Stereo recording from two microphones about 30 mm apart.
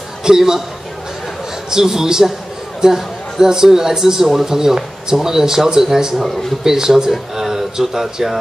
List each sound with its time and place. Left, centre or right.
0.2 s a man's voice: centre
1.7 s a man's voice: centre